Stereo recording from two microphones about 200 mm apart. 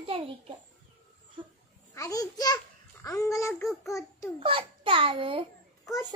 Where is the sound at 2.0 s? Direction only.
15° left (ahead or behind).